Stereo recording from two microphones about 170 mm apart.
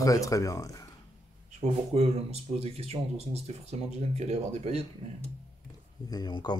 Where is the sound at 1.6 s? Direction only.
35° right (ahead or behind).